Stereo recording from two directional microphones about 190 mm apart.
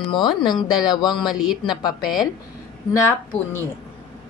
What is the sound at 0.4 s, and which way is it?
Speech, 25° left (ahead or behind).